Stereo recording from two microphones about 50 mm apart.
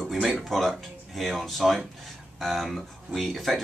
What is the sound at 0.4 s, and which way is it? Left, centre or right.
Speech, centre.